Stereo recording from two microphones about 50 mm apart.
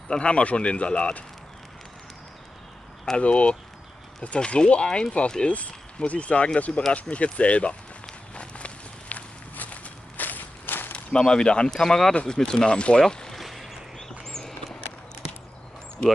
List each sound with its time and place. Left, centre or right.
0.1 s speech: left
3.2 s speech: left
8.4 s walk: left
11.1 s speech: centre
13.0 s a sound: centre
13.4 s a sound: centre